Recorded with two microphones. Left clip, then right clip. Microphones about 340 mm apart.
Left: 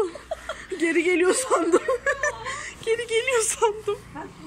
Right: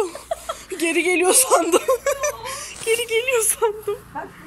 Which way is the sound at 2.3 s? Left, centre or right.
Right.